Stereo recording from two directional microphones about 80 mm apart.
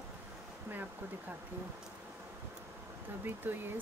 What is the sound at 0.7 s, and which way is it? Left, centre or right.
Speech, right.